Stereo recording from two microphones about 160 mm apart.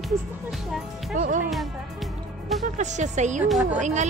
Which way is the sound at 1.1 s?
60° right (ahead or behind).